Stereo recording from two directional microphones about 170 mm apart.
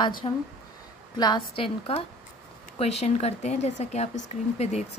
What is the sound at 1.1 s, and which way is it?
A woman's voice, 25° left (ahead or behind).